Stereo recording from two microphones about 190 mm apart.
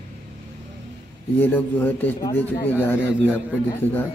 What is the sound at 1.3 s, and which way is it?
A man's voice, 10° left (ahead or behind).